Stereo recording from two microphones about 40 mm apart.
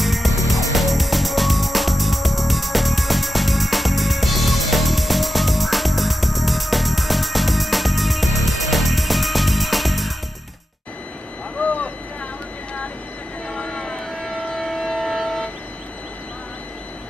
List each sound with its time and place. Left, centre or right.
0.0 s music: centre
11.5 s vehicle: left
13.6 s vehicle: centre
14.5 s train: centre